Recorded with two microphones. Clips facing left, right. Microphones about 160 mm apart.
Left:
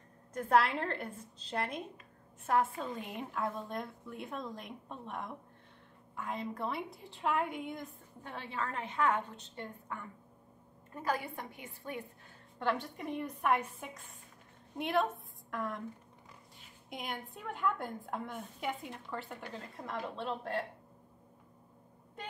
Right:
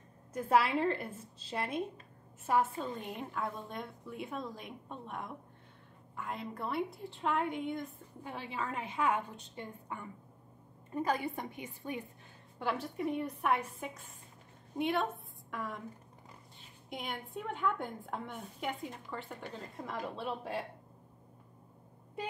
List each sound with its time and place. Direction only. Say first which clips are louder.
0.3 s a woman's voice: even; 5° right (ahead or behind)
8.2 s a woman's voice: even; 10° right (ahead or behind)
12.5 s a woman's voice: left 1 dB; 5° right (ahead or behind)
16.9 s a woman's voice: right 1 dB; centre (ahead or behind)